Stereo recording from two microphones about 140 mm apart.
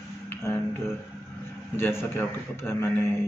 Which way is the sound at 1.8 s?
15° left (ahead or behind).